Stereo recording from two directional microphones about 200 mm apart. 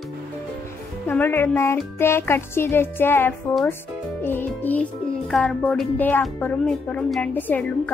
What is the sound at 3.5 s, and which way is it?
Speech, 5° left (ahead or behind).